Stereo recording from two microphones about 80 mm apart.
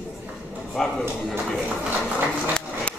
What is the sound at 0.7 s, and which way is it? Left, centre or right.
Speech, centre.